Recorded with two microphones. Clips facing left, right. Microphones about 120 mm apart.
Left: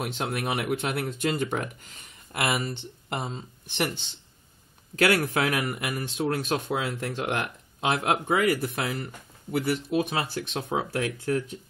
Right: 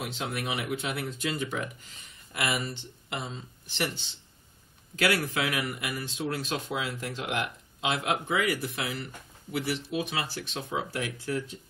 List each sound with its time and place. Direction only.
0.0 s speech: 50° left (ahead or behind)
3.6 s speech: 55° left (ahead or behind)
4.9 s speech: 50° left (ahead or behind)